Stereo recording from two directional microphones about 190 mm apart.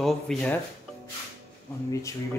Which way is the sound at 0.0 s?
5° left (ahead or behind).